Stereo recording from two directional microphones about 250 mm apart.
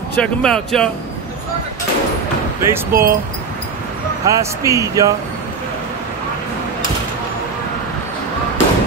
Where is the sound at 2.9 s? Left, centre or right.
Right.